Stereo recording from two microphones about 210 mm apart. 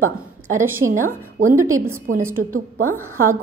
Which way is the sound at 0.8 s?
55° right (ahead or behind).